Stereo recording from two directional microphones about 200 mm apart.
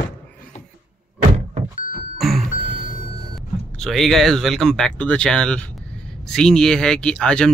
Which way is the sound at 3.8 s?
Centre (ahead or behind).